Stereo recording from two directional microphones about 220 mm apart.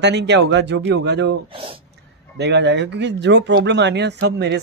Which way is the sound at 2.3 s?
50° right (ahead or behind).